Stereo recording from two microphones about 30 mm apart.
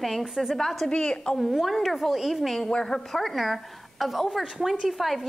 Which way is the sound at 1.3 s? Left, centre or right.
Centre.